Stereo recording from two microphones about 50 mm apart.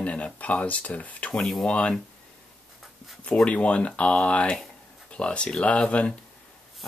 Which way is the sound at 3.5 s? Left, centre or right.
Left.